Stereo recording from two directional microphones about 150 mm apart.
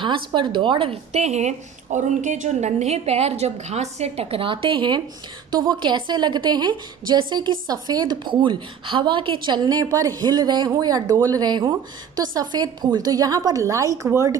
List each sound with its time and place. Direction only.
0.0 s a woman's voice: 30° right (ahead or behind)